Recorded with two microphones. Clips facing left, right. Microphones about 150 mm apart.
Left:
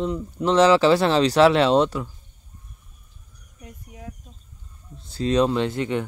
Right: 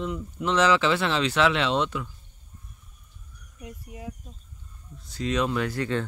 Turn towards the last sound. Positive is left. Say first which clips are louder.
# left 3 dB
turn(degrees=20)  # may be behind; listen again after turning